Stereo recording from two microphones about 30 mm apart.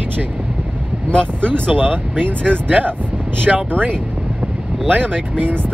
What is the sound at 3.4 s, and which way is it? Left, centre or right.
Speech, right.